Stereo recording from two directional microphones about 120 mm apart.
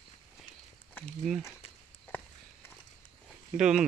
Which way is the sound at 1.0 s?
15° left (ahead or behind).